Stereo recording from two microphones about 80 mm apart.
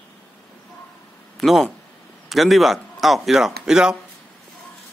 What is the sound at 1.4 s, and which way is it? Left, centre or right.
A man's voice, centre.